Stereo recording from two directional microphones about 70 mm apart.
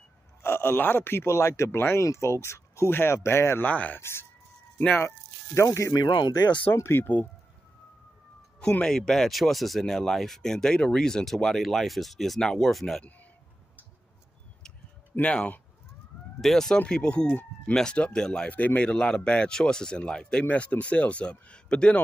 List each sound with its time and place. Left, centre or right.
0.4 s speech: left
3.6 s speech: left
4.0 s speech: left
5.5 s speech: left
5.9 s speech: left
6.7 s speech: left
8.8 s speech: centre
15.1 s speech: left
16.3 s speech: centre
18.5 s speech: left